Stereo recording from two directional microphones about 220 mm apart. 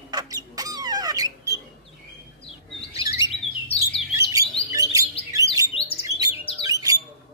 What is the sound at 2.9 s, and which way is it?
Bird, 15° right (ahead or behind).